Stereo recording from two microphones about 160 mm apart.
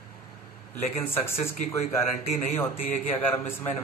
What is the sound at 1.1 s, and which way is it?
Speech, 15° left (ahead or behind).